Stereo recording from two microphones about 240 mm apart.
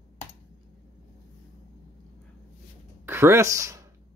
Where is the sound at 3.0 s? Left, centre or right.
Centre.